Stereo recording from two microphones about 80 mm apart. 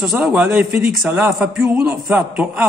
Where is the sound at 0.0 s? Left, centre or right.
Centre.